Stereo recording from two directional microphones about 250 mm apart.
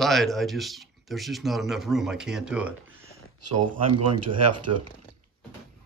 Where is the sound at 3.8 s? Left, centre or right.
Right.